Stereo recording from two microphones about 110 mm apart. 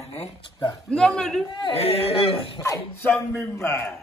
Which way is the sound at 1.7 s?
65° left (ahead or behind).